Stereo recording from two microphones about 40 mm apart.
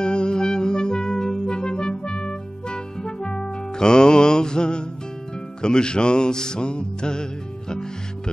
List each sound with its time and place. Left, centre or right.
0.0 s music: left